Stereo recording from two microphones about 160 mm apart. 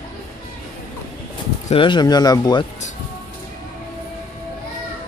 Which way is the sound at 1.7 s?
30° left (ahead or behind).